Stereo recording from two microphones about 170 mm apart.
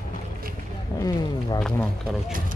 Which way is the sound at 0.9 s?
20° left (ahead or behind).